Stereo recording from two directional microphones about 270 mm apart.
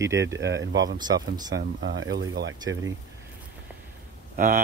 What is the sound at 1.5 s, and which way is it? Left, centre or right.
Speech, right.